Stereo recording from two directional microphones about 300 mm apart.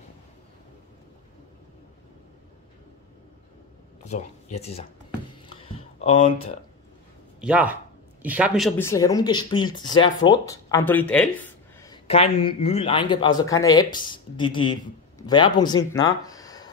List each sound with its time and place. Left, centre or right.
4.6 s speech: left
5.6 s a sound: centre
7.3 s speech: centre
11.8 s speech: centre